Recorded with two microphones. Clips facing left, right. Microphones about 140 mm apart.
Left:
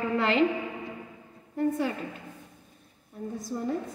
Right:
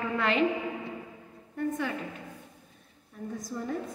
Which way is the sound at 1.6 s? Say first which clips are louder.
Left 4 dB; 30° left (ahead or behind).